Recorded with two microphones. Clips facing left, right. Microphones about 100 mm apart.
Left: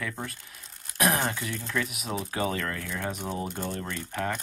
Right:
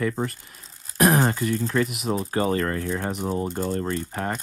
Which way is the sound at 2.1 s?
40° right (ahead or behind).